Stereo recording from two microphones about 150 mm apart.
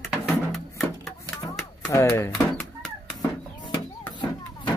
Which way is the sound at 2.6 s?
5° left (ahead or behind).